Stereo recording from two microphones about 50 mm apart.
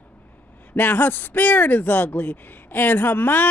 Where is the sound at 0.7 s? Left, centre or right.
Left.